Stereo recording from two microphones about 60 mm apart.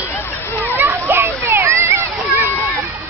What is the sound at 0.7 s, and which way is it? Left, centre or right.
Children playing, right.